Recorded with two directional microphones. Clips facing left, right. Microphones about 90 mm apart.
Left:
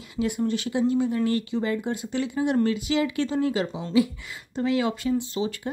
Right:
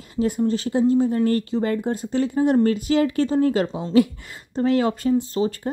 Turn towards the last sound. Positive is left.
turn(degrees=-40)  # may be behind; listen again after turning